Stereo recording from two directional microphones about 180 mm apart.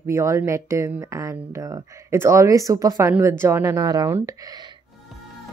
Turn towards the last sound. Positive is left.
turn(degrees=-20)  # may be behind; listen again after turning